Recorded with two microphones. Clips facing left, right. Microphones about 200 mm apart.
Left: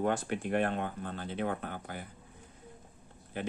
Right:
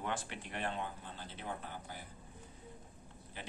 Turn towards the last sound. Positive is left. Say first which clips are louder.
# left 12 dB
turn(degrees=55)  # may be behind; listen again after turning